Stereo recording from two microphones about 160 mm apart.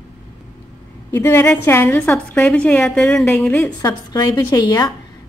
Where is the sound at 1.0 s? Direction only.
15° left (ahead or behind).